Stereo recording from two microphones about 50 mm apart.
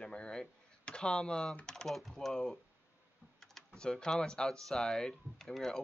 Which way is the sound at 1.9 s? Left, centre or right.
Centre.